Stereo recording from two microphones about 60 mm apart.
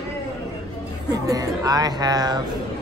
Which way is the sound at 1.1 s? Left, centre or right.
Right.